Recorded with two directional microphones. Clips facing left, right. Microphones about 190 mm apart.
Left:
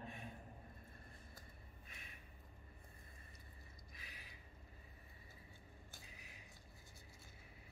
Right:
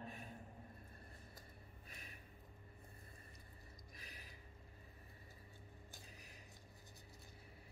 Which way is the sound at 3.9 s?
40° right (ahead or behind).